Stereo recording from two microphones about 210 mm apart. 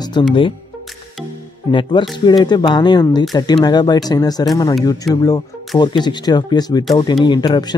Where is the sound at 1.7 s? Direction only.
20° left (ahead or behind).